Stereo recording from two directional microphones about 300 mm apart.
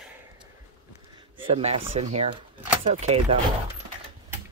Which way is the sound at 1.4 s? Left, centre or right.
Centre.